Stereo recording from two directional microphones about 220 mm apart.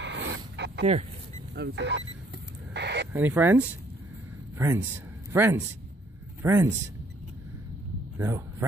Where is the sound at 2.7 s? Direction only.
50° right (ahead or behind).